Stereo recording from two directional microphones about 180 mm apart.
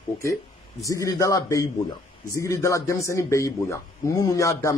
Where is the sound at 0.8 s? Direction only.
20° left (ahead or behind).